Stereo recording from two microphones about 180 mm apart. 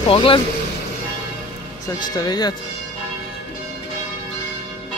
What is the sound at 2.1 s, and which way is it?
Speech, 20° left (ahead or behind).